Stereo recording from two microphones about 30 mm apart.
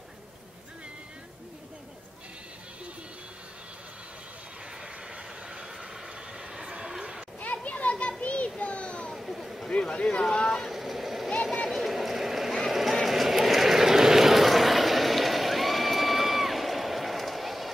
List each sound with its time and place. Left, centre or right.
6.8 s a sound: right
7.5 s children playing: left
8.8 s children playing: left
9.1 s a sound: centre
9.7 s boat: left
10.7 s vehicle: centre